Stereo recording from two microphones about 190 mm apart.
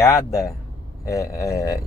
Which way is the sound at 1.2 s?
15° left (ahead or behind).